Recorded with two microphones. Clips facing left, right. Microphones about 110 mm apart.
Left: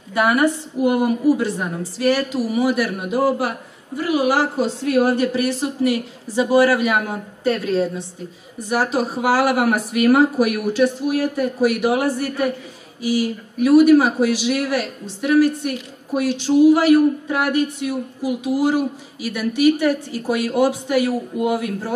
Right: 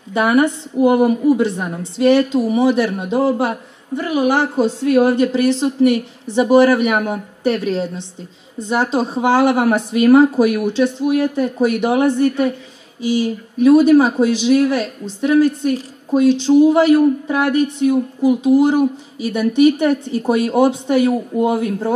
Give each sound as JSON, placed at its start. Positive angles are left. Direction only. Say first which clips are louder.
{"t": 0.1, "sound": "speech", "louder": "right 2 dB", "side_deg": -25}